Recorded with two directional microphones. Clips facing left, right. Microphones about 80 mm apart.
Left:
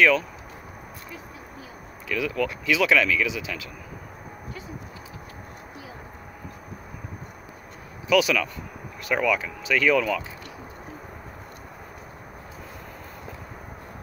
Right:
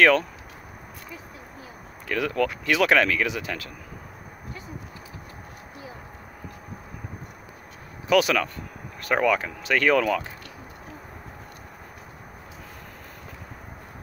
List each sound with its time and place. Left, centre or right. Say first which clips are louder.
2.0 s speech: right 2 dB; right
8.1 s speech: right 1 dB; right